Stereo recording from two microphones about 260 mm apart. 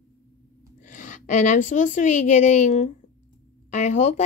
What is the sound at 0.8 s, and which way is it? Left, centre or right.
A woman's voice, left.